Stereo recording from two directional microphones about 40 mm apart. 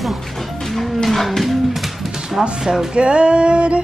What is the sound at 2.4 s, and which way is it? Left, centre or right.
Speech, centre.